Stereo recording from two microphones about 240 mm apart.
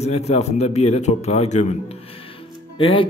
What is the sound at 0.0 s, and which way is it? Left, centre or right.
A man's voice, left.